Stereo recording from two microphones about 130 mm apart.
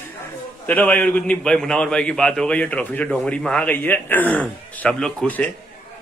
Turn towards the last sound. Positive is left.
turn(degrees=5)  # may be behind; listen again after turning